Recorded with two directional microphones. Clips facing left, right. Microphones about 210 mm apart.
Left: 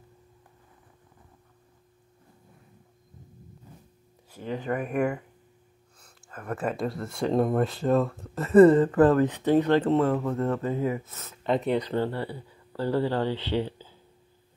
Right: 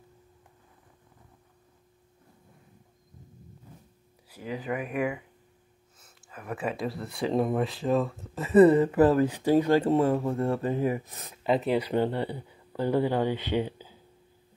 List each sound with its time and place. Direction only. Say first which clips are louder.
4.3 s speech: left 2 dB; 5° right (ahead or behind)
11.9 s speech: right 2 dB; 20° right (ahead or behind)